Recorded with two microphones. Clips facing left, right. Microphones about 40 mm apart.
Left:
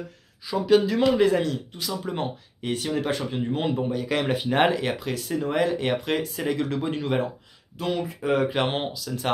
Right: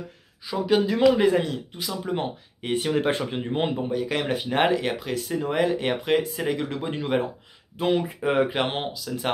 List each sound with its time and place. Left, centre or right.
0.5 s speech: centre
2.7 s speech: right
3.7 s speech: centre
7.7 s speech: right
8.5 s speech: centre